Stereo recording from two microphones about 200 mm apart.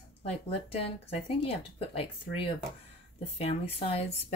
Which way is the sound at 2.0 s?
25° left (ahead or behind).